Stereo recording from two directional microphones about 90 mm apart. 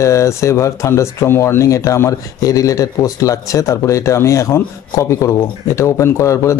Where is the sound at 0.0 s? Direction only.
35° left (ahead or behind).